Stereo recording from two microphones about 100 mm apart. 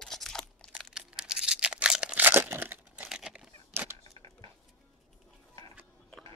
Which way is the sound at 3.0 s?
5° right (ahead or behind).